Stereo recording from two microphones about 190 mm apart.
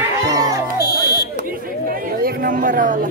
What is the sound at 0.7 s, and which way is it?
Buzzer, 20° left (ahead or behind).